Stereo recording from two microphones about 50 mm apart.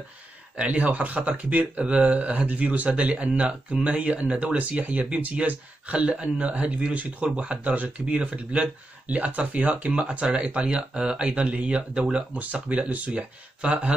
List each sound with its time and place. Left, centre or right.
0.6 s speech: right